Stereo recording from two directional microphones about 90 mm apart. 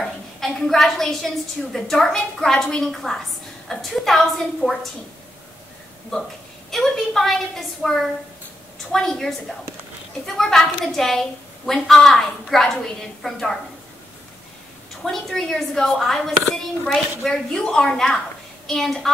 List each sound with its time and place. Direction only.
0.0 s a woman's voice: centre (ahead or behind)
6.7 s a woman's voice: 5° left (ahead or behind)
15.0 s a woman's voice: 5° left (ahead or behind)